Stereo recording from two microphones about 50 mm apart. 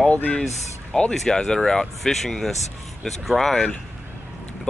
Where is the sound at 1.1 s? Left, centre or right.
Centre.